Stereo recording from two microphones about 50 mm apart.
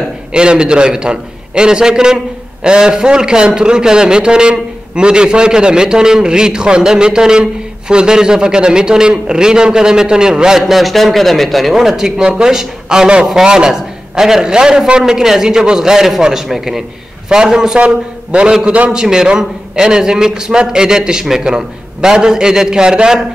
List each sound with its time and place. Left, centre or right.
0.3 s speech: centre
10.7 s speech: centre
17.7 s a man's voice: right